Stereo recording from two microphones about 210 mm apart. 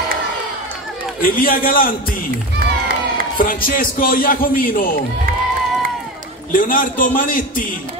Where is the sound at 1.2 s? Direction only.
40° left (ahead or behind).